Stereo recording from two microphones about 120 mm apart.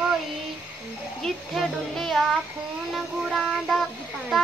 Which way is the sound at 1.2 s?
Centre (ahead or behind).